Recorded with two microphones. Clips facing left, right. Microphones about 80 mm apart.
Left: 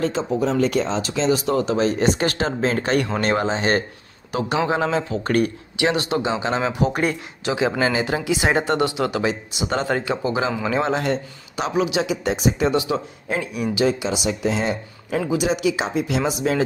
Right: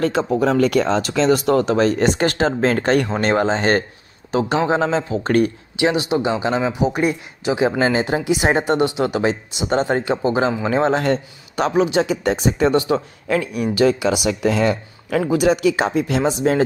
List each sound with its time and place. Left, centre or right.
0.0 s a man's voice: right
5.9 s a man's voice: centre
6.5 s speech: centre
7.8 s a man's voice: right
13.3 s speech: right
14.0 s speech: right